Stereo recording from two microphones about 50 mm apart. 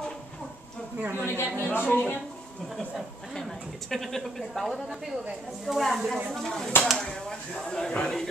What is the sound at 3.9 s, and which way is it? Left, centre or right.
Speech, centre.